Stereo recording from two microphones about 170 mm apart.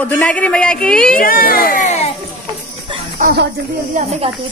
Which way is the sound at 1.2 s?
55° left (ahead or behind).